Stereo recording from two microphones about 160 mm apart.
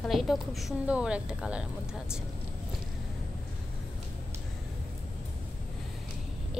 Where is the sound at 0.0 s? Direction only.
Centre (ahead or behind).